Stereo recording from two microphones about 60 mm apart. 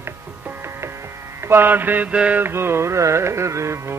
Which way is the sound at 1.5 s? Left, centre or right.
Right.